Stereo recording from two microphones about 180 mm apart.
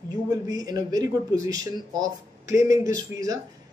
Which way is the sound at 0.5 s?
20° right (ahead or behind).